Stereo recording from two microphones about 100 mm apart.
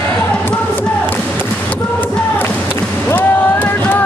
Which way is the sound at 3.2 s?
20° left (ahead or behind).